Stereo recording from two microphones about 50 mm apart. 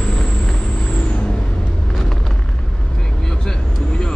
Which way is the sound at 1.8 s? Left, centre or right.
Centre.